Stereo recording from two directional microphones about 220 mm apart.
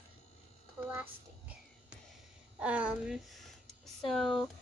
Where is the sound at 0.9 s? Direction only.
5° right (ahead or behind).